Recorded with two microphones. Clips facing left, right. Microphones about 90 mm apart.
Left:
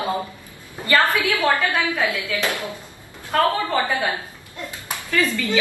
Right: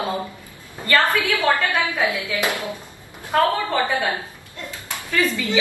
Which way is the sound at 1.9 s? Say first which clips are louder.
Right 1 dB; 20° right (ahead or behind).